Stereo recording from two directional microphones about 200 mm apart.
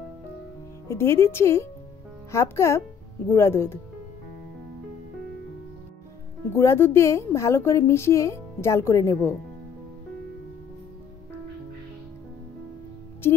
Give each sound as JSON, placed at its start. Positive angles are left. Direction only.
{"t": 0.8, "sound": "a woman's voice", "side_deg": 10}
{"t": 6.5, "sound": "a woman's voice", "side_deg": 10}